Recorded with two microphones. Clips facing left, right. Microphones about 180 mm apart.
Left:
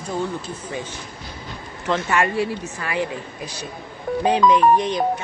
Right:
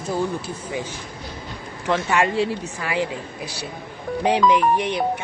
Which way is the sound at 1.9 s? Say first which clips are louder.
Even; 15° right (ahead or behind).